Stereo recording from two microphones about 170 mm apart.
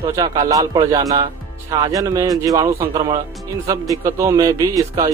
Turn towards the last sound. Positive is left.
turn(degrees=-20)  # may be behind; listen again after turning